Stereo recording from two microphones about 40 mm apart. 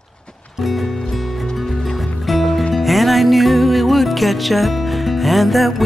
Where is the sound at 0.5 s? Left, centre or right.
Centre.